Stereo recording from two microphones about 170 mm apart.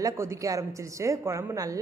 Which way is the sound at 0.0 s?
20° right (ahead or behind).